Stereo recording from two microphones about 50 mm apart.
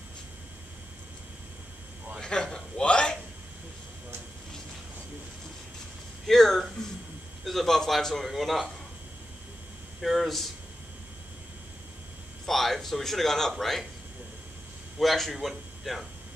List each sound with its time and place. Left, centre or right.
2.1 s a sound: centre
6.2 s speech: centre
10.0 s speech: centre
12.4 s speech: centre
15.0 s speech: centre